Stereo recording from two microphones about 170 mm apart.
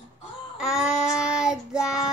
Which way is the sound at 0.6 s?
5° right (ahead or behind).